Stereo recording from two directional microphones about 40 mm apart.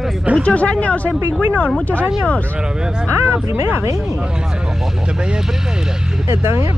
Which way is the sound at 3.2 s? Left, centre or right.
Right.